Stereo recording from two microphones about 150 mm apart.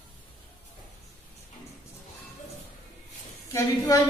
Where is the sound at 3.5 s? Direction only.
20° left (ahead or behind).